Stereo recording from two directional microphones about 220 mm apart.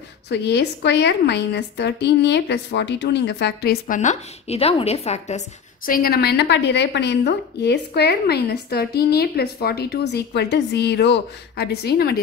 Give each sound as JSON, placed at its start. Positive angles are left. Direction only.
{"t": 0.3, "sound": "a woman's voice", "side_deg": 50}
{"t": 5.9, "sound": "a woman's voice", "side_deg": 40}